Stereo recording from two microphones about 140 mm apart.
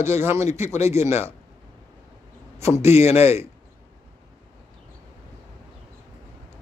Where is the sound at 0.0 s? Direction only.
20° right (ahead or behind).